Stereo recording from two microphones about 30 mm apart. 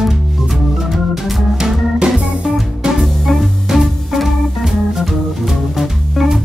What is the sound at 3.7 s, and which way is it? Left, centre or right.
Music, centre.